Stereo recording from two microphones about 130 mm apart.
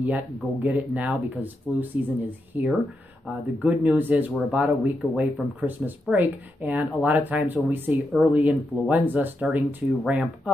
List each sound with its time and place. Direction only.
0.0 s speech: 10° right (ahead or behind)